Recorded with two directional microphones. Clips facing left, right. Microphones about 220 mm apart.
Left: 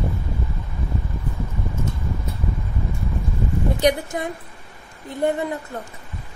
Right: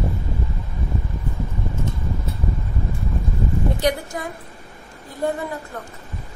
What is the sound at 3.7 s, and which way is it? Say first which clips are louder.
Speech: left 3 dB; 20° left (ahead or behind).